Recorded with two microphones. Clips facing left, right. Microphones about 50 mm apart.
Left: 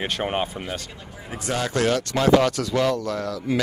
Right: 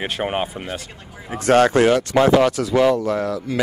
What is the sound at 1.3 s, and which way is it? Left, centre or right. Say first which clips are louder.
Speech: right 12 dB; right.